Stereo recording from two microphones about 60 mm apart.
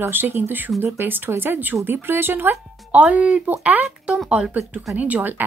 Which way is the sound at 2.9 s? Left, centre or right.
Right.